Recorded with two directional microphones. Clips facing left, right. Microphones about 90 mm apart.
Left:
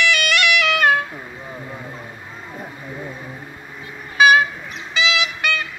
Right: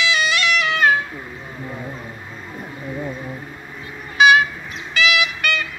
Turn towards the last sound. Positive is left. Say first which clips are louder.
# right 2 dB
turn(degrees=25)  # may be behind; listen again after turning